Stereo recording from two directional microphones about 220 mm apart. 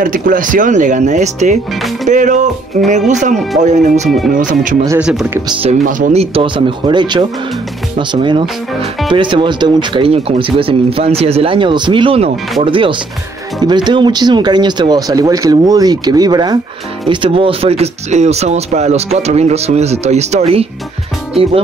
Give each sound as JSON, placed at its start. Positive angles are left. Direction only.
{"t": 0.0, "sound": "speech", "side_deg": -35}
{"t": 4.8, "sound": "speech", "side_deg": -5}
{"t": 5.5, "sound": "speech", "side_deg": -25}